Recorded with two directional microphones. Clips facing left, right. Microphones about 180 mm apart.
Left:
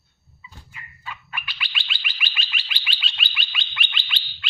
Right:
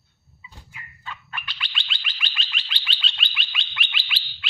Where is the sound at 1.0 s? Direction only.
5° left (ahead or behind).